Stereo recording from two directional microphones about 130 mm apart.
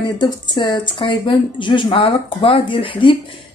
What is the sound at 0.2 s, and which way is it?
A woman's voice, 35° left (ahead or behind).